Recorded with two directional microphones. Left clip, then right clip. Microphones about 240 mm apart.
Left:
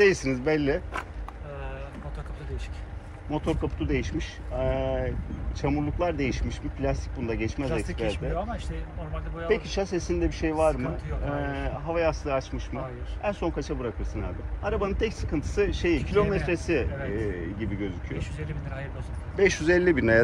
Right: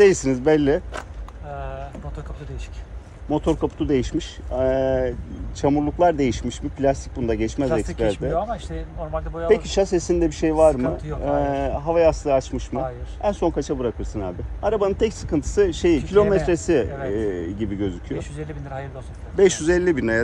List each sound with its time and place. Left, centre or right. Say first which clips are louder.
0.0 s speech: right 6 dB; centre
3.3 s speech: right 8 dB; centre
8.0 s speech: right 8 dB; right
9.5 s speech: right 8 dB; centre
19.3 s speech: right 5 dB; centre